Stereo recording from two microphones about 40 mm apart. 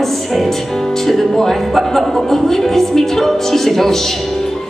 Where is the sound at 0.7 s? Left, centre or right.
Centre.